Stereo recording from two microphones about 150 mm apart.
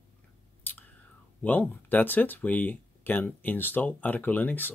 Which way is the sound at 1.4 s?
10° left (ahead or behind).